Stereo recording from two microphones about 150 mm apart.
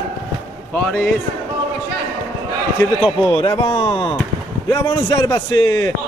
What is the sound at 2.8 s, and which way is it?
Speech, 15° left (ahead or behind).